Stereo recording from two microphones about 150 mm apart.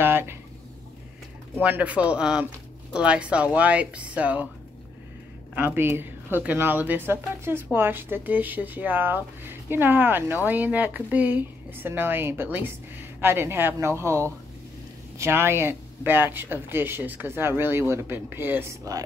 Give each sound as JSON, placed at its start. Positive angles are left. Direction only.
{"t": 0.0, "sound": "a sound", "side_deg": -15}
{"t": 1.6, "sound": "speech", "side_deg": -10}
{"t": 5.6, "sound": "speech", "side_deg": -15}